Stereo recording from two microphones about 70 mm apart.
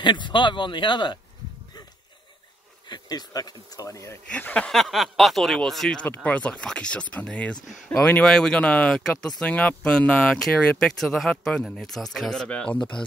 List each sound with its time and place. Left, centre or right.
0.0 s speech: left
2.9 s speech: left
4.3 s speech: centre
4.6 s speech: centre
6.0 s speech: left
7.6 s speech: centre
8.0 s speech: centre